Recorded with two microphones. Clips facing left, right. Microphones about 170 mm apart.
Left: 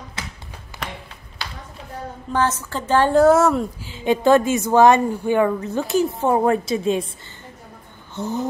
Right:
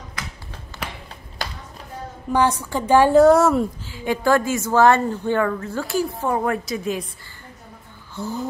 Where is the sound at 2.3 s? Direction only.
15° right (ahead or behind).